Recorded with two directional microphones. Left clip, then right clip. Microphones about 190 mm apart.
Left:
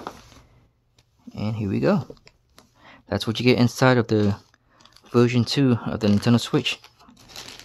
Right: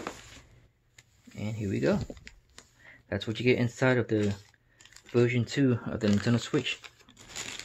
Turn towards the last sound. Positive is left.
turn(degrees=35)  # may be behind; listen again after turning